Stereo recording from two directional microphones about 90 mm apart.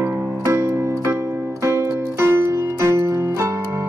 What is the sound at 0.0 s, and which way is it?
Music, 30° right (ahead or behind).